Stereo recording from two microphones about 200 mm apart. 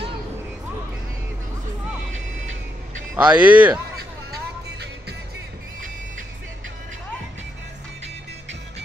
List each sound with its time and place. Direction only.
2.0 s vehicle: 75° right (ahead or behind)
3.2 s speech: 5° right (ahead or behind)